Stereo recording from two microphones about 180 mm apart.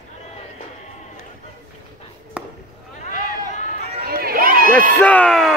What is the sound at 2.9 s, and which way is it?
Run, 45° left (ahead or behind).